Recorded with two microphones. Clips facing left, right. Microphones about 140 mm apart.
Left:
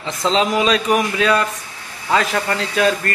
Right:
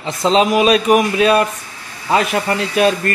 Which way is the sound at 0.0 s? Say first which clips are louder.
Right 4 dB; 20° right (ahead or behind).